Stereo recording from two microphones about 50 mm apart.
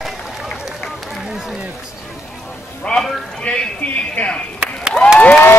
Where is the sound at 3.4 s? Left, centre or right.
Left.